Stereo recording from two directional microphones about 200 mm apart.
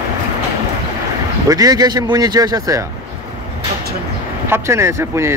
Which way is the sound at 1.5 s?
20° right (ahead or behind).